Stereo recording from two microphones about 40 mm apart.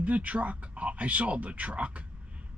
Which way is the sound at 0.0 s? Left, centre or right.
Right.